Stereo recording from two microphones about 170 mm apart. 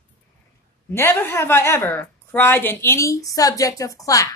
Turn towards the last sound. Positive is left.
turn(degrees=20)  # may be behind; listen again after turning